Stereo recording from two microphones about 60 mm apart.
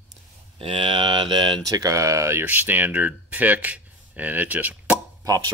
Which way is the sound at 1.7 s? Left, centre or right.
Right.